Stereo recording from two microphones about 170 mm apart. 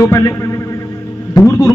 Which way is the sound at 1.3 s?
20° left (ahead or behind).